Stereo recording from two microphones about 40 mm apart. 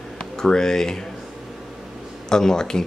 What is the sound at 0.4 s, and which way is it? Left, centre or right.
Speech, centre.